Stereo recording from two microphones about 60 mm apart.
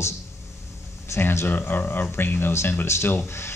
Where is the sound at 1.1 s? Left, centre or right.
Left.